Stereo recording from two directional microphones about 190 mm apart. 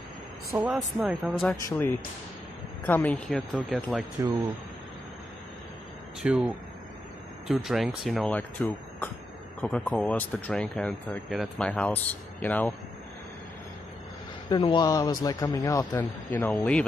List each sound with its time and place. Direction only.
0.5 s speech: 5° right (ahead or behind)
1.5 s speech: 15° left (ahead or behind)
6.2 s speech: 5° right (ahead or behind)
14.5 s speech: 25° left (ahead or behind); by 16.8 s 5° left (ahead or behind)